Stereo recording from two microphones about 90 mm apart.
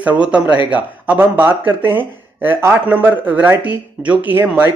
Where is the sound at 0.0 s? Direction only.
15° right (ahead or behind).